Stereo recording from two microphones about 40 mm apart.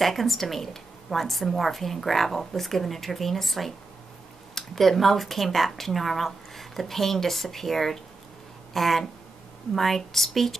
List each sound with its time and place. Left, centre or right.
0.0 s speech: centre